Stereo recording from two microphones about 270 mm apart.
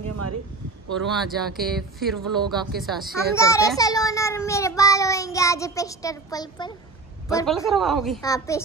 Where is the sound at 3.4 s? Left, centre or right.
Centre.